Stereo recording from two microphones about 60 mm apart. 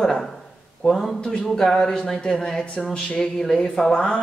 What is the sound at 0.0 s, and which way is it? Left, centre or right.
Speech, centre.